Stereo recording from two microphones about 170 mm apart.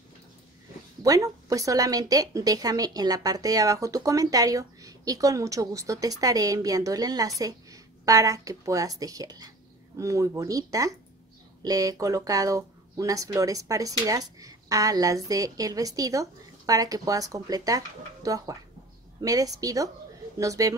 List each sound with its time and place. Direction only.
1.0 s a woman's voice: 20° right (ahead or behind)